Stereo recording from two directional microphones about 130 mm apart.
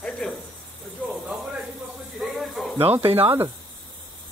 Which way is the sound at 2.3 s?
Centre (ahead or behind).